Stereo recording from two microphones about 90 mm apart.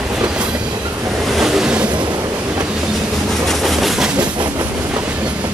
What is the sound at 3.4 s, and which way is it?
Train, centre (ahead or behind).